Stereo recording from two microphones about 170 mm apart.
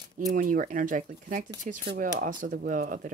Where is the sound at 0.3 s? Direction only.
55° right (ahead or behind).